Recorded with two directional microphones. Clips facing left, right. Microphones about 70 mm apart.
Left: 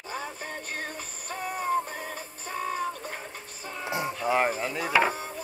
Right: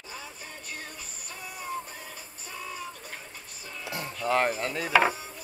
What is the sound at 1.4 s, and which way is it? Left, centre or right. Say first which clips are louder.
Synthetic singing: left 9 dB; left.